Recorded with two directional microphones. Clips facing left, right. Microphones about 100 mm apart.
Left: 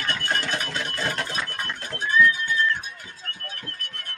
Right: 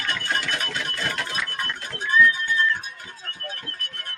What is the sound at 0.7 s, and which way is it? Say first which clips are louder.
Sewing machine: left 1 dB; 35° left (ahead or behind).